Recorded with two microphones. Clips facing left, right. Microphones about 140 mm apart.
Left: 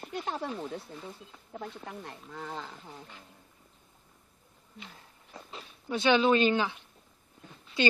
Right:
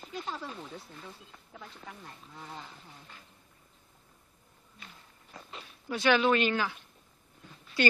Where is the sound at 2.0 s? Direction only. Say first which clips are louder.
Left 6 dB; 70° left (ahead or behind).